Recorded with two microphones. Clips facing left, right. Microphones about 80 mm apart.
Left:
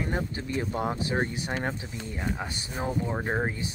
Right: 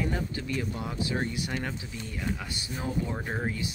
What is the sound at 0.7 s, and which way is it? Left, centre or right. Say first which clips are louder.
Speech: left 4 dB; left.